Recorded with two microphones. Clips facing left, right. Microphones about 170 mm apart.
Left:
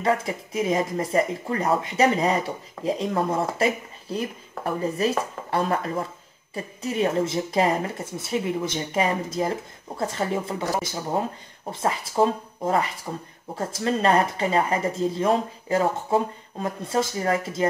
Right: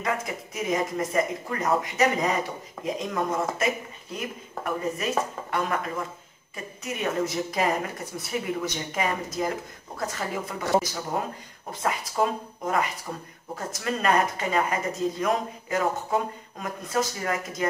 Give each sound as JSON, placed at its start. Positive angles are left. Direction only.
{"t": 0.0, "sound": "speech", "side_deg": 30}